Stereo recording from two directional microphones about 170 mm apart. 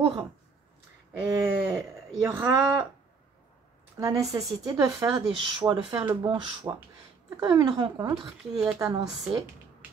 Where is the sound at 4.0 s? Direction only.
20° right (ahead or behind).